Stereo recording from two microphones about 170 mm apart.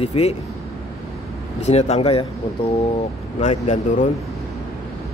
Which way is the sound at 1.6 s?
40° left (ahead or behind).